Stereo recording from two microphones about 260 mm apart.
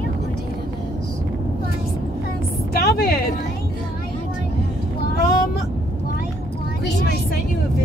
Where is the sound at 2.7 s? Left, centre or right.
Left.